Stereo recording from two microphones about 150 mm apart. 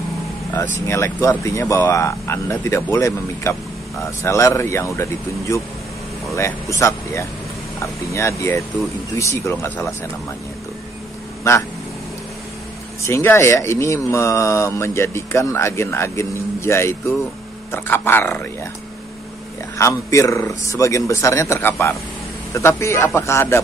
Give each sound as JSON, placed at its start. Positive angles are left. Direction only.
{"t": 0.7, "sound": "speech", "side_deg": 20}
{"t": 11.4, "sound": "speech", "side_deg": 20}
{"t": 13.0, "sound": "speech", "side_deg": 15}
{"t": 19.8, "sound": "speech", "side_deg": 20}